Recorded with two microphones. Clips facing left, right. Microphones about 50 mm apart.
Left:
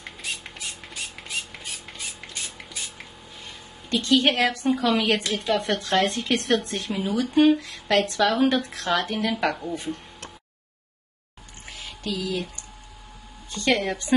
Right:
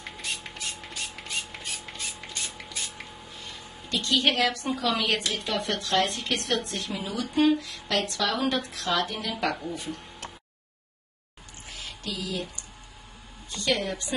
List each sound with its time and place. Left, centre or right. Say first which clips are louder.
0.0 s a sound: left 1 dB; centre
4.0 s a woman's voice: left 4 dB; left
5.2 s a woman's voice: left 3 dB; centre
5.5 s a woman's voice: left 5 dB; left
9.5 s a woman's voice: left 3 dB; centre
11.7 s a sound: left 5 dB; left
13.5 s a woman's voice: left 4 dB; left